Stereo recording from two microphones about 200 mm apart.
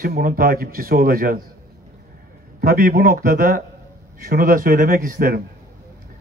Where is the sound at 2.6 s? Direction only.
50° right (ahead or behind).